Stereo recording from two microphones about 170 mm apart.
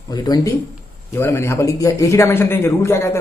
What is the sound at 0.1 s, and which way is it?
A man's voice, 20° left (ahead or behind).